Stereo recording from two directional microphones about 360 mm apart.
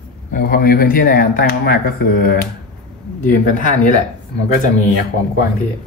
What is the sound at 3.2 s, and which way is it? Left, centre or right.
Speech, left.